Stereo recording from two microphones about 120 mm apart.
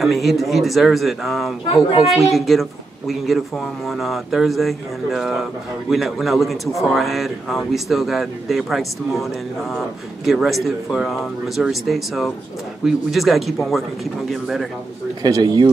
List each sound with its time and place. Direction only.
0.0 s speech: centre (ahead or behind)
15.2 s speech: 35° right (ahead or behind)